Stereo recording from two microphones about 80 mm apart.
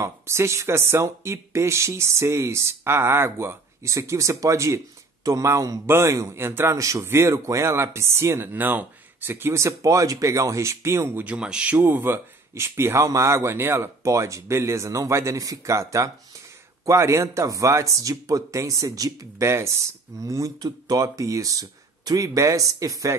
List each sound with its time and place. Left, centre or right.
0.0 s speech: right
6.7 s speech: right
11.2 s speech: centre; by 19.4 s right
19.4 s speech: right